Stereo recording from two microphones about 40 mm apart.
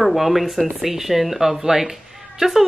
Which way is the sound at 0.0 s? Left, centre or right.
Centre.